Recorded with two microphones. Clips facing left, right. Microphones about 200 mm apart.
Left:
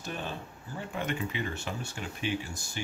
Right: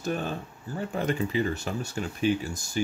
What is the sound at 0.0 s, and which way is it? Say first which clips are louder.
Speech: right 7 dB; 45° right (ahead or behind).